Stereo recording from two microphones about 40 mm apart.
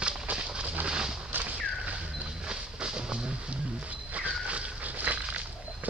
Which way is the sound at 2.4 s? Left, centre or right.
Right.